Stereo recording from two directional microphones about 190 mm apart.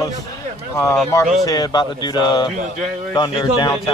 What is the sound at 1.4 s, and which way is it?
Speech, 20° left (ahead or behind).